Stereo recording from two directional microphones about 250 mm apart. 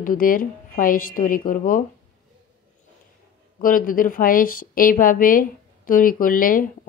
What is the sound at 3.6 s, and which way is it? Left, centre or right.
A woman's voice, left.